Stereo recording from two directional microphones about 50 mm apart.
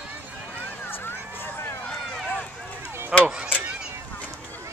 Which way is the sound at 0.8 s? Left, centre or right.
Left.